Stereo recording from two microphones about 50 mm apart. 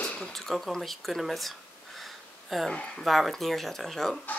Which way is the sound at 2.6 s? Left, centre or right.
Centre.